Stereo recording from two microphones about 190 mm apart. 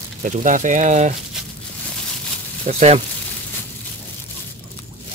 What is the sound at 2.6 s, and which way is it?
Speech, 35° right (ahead or behind).